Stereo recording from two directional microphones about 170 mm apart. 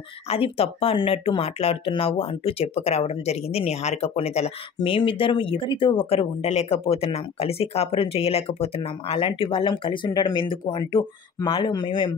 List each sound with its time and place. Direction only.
0.3 s speech: 35° left (ahead or behind)